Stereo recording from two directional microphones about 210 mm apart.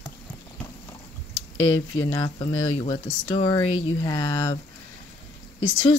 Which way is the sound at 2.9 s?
20° left (ahead or behind).